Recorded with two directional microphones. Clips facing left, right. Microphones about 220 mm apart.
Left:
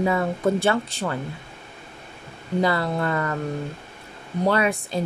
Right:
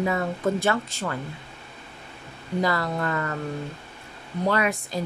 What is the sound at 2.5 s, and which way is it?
Speech, 30° left (ahead or behind).